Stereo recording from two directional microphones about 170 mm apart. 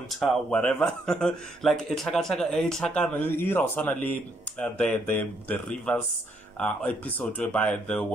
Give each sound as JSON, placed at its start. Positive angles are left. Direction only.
{"t": 0.2, "sound": "a man's voice", "side_deg": 5}